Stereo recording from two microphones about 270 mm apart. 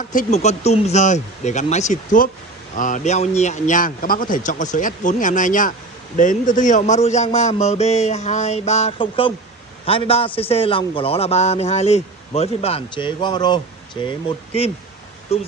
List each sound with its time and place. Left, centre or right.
0.1 s speech: left
15.3 s speech: left